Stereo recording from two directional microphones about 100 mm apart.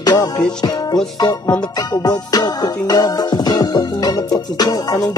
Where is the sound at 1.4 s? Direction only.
15° left (ahead or behind).